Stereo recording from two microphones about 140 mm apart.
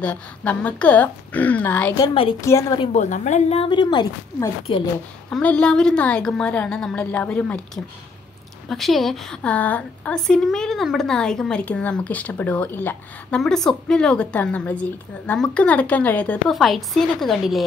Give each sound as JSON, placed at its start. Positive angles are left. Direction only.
{"t": 0.0, "sound": "a woman's voice", "side_deg": 10}
{"t": 2.9, "sound": "speech", "side_deg": 60}
{"t": 5.3, "sound": "a woman's voice", "side_deg": 10}
{"t": 16.4, "sound": "a woman's voice", "side_deg": 0}